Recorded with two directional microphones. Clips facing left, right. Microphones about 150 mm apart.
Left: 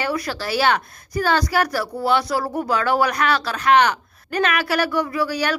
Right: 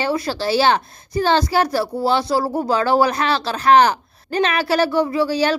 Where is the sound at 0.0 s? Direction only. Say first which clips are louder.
Right 4 dB; 30° right (ahead or behind).